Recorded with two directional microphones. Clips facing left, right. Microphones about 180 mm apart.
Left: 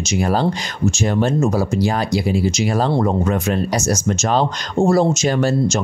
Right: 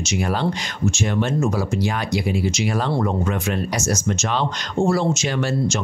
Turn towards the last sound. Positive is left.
turn(degrees=40)  # may be behind; listen again after turning